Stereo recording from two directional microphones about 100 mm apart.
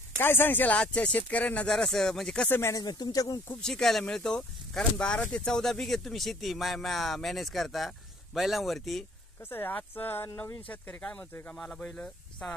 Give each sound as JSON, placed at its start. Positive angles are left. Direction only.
{"t": 0.2, "sound": "speech", "side_deg": 20}
{"t": 2.7, "sound": "speech", "side_deg": 45}
{"t": 3.6, "sound": "speech", "side_deg": 5}
{"t": 9.5, "sound": "speech", "side_deg": 20}